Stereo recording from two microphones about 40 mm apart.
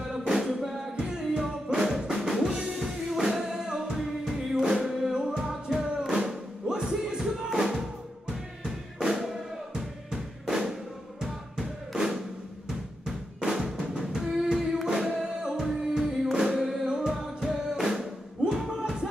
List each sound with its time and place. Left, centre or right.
0.0 s music: centre
1.9 s drum kit: centre
2.7 s music: centre
8.3 s drum: centre
15.0 s music: centre